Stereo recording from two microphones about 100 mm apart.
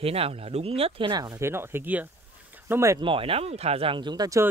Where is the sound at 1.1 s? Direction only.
40° right (ahead or behind).